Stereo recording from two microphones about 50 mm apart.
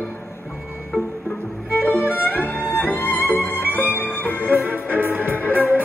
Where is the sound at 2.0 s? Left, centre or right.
Left.